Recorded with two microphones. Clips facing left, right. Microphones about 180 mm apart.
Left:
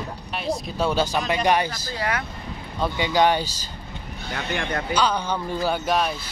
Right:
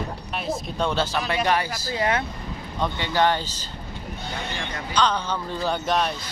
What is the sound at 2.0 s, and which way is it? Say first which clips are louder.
Speech: right 3 dB; 25° right (ahead or behind).